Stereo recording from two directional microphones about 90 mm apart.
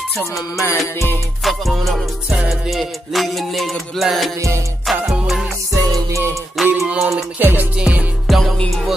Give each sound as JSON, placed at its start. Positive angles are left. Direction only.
{"t": 0.2, "sound": "music", "side_deg": 30}
{"t": 1.4, "sound": "music", "side_deg": 0}
{"t": 2.2, "sound": "music", "side_deg": -15}
{"t": 2.7, "sound": "music", "side_deg": 0}
{"t": 5.7, "sound": "music", "side_deg": -40}
{"t": 6.6, "sound": "music", "side_deg": 0}
{"t": 7.3, "sound": "music", "side_deg": -20}
{"t": 8.3, "sound": "music", "side_deg": 0}